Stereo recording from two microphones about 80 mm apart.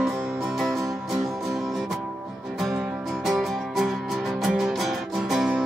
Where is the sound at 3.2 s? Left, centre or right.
Centre.